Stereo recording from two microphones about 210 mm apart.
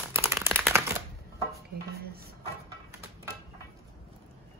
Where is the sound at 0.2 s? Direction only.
10° right (ahead or behind).